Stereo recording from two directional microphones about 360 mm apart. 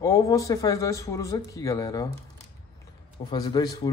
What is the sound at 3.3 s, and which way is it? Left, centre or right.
Speech, centre.